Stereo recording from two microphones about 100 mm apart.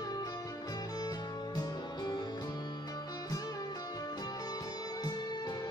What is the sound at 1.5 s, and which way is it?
Music, 45° left (ahead or behind).